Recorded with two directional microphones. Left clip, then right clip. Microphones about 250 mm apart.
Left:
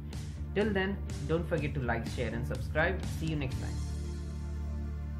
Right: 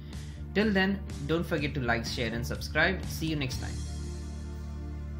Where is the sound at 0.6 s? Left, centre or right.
Right.